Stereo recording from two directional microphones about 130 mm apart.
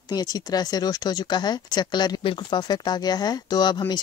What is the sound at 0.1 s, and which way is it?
Speech, 30° left (ahead or behind).